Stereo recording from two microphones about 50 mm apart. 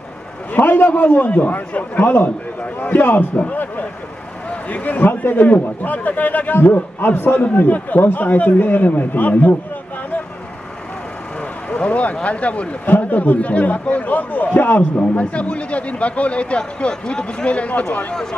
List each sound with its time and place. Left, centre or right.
0.6 s a man's voice: left
11.7 s a man's voice: left
14.8 s a man's voice: left